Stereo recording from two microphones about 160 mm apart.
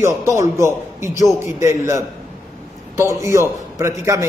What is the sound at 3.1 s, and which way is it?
A man's voice, 20° right (ahead or behind).